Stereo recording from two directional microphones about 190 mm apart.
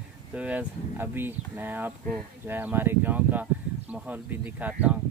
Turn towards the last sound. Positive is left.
turn(degrees=-5)  # may be behind; listen again after turning